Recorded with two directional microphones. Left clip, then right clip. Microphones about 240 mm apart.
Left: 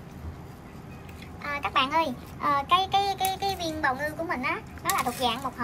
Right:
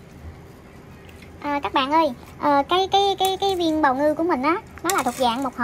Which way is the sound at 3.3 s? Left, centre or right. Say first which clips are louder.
Right 8 dB; centre.